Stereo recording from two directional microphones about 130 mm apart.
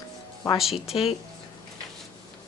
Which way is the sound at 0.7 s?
50° left (ahead or behind).